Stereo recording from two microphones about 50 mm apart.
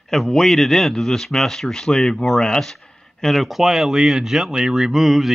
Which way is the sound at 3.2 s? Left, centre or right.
Centre.